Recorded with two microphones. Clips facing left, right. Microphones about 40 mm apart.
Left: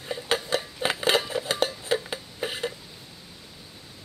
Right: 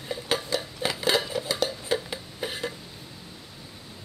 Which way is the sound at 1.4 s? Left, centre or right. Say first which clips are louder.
Left 1 dB; left.